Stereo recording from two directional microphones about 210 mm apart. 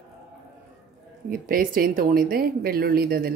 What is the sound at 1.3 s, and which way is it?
Speech, 40° right (ahead or behind).